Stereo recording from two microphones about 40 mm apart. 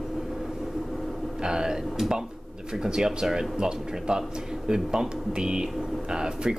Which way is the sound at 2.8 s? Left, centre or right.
Centre.